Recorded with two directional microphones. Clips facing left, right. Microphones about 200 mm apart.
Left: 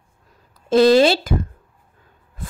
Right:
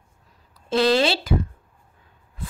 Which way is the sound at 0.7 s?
45° left (ahead or behind).